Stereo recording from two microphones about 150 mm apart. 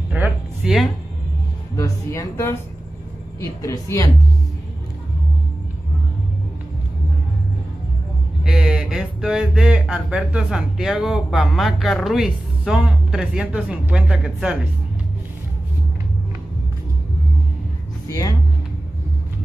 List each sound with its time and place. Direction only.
0.1 s a sound: 5° right (ahead or behind)
1.8 s a woman's voice: 20° left (ahead or behind)
8.5 s speech: 5° right (ahead or behind)
18.0 s vehicle: 25° left (ahead or behind)